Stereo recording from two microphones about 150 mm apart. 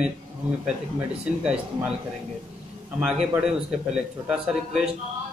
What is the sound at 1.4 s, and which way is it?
Speech, 5° right (ahead or behind).